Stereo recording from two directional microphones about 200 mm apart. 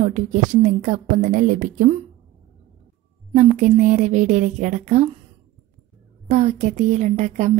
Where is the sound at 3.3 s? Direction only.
35° right (ahead or behind).